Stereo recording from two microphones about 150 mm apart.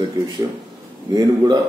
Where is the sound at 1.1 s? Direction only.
25° right (ahead or behind).